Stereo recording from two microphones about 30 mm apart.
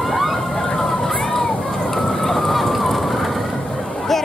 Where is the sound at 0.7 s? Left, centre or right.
Centre.